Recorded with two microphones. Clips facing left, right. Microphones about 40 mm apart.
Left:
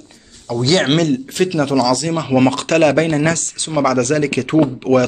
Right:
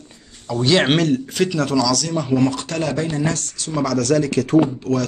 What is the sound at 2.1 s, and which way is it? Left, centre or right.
Speech, left.